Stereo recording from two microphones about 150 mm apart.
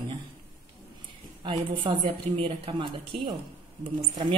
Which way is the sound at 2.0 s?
40° right (ahead or behind).